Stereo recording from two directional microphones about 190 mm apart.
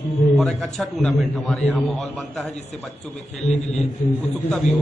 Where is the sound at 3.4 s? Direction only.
35° left (ahead or behind).